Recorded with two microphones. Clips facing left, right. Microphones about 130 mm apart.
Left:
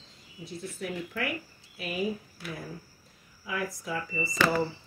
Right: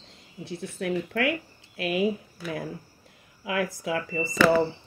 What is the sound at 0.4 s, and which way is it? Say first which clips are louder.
Speech: right 4 dB; 65° right (ahead or behind).